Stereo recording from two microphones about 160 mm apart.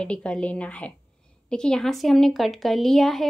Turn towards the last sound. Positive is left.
turn(degrees=0)  # may be behind; listen again after turning